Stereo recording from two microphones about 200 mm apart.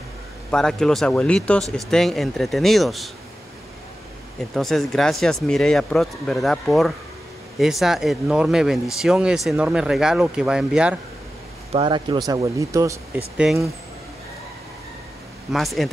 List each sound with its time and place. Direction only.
0.5 s speech: 5° left (ahead or behind)
4.4 s speech: centre (ahead or behind)
11.7 s speech: 25° right (ahead or behind)
13.4 s speech: centre (ahead or behind)
15.5 s speech: centre (ahead or behind)